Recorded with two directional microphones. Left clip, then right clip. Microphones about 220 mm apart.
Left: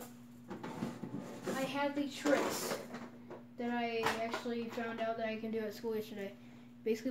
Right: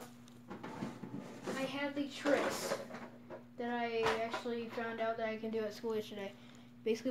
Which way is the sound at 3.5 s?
Centre (ahead or behind).